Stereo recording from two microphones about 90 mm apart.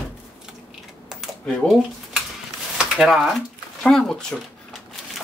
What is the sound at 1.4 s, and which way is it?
Speech, 10° left (ahead or behind).